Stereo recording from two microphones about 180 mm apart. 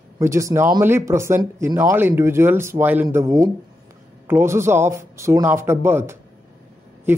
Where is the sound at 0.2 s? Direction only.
15° right (ahead or behind).